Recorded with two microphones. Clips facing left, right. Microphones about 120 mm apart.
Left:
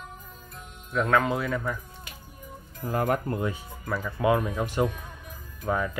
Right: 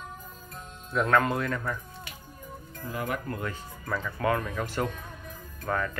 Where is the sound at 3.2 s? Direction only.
20° left (ahead or behind).